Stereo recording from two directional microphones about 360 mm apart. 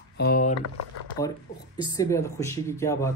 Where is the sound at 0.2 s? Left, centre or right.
Left.